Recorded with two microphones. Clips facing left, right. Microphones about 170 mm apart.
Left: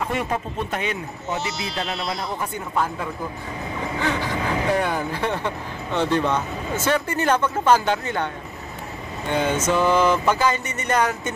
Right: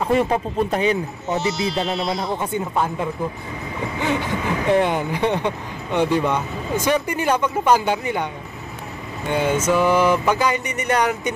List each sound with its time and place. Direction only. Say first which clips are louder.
0.0 s speech: right 6 dB; 35° right (ahead or behind)
1.3 s speech: right 6 dB; centre (ahead or behind)
2.3 s speech: right 3 dB; 25° right (ahead or behind)
4.7 s speech: right 4 dB; 20° right (ahead or behind)
9.3 s speech: right 2 dB; 10° right (ahead or behind)